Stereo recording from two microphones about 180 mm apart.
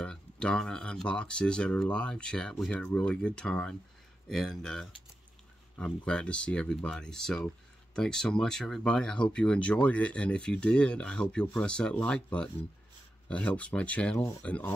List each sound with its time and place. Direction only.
0.0 s speech: 5° left (ahead or behind)